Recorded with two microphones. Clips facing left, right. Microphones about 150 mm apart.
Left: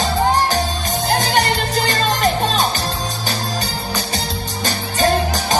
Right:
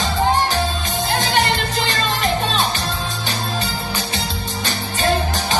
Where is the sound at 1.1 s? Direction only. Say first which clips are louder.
Left 2 dB; 40° left (ahead or behind).